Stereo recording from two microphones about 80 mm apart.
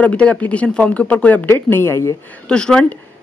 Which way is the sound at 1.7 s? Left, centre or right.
Left.